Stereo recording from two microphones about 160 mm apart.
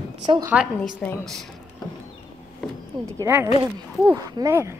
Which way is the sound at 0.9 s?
5° left (ahead or behind).